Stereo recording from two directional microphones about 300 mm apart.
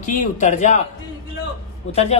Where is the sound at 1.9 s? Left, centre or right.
Left.